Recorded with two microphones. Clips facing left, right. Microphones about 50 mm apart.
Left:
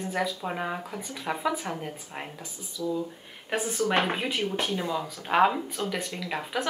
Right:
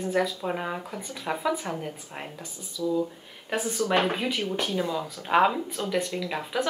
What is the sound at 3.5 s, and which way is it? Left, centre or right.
Speech, centre.